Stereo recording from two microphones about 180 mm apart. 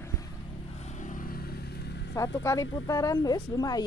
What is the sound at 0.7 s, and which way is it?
Vehicle, 40° left (ahead or behind).